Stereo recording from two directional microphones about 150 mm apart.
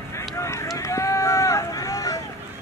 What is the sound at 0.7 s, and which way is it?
Run, 20° left (ahead or behind).